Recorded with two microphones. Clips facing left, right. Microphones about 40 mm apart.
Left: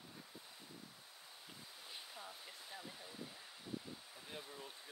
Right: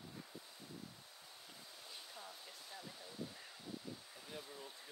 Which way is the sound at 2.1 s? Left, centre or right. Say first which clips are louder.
Left 1 dB; centre.